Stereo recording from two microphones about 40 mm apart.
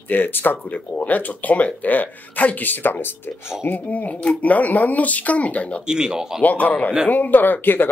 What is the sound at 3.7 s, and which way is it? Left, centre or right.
Speech, left.